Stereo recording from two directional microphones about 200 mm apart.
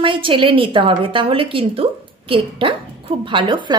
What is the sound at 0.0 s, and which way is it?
A woman's voice, 25° right (ahead or behind).